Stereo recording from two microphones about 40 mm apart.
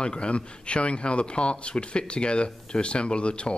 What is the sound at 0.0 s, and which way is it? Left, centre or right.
A man's voice, left.